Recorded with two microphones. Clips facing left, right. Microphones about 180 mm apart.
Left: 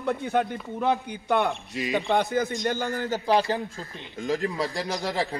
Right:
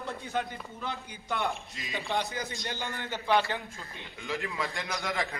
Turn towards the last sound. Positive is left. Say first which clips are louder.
# left 6 dB
turn(degrees=35)  # may be behind; listen again after turning